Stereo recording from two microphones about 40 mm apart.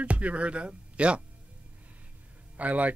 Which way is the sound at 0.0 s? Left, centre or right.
Right.